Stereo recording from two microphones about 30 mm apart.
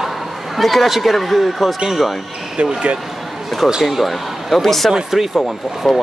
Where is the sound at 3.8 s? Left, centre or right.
Centre.